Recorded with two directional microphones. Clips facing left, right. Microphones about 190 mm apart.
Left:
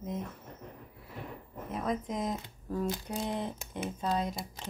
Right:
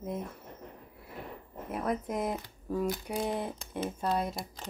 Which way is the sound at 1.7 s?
5° right (ahead or behind).